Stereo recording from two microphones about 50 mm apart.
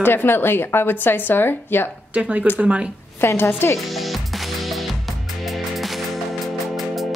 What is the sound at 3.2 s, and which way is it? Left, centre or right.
Speech, left.